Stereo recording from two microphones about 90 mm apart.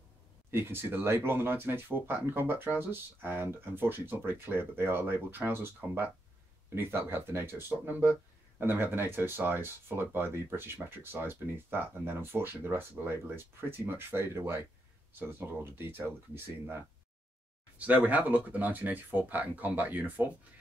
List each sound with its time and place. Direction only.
0.5 s speech: 25° right (ahead or behind)